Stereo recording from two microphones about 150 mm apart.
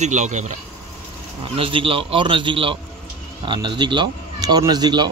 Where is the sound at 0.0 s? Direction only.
50° right (ahead or behind).